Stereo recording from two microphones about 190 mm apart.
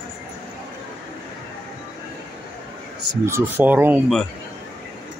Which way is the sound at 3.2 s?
10° right (ahead or behind).